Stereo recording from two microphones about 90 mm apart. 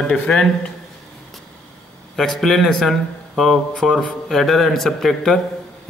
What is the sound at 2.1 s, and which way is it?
A man's voice, 5° left (ahead or behind).